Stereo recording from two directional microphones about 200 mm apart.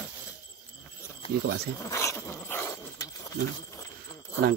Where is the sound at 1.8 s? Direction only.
15° left (ahead or behind).